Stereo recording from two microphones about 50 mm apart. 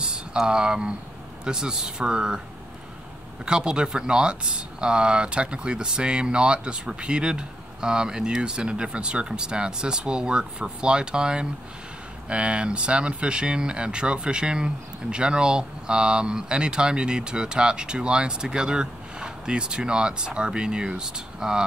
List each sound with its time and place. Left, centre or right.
0.0 s speech: centre
3.4 s speech: centre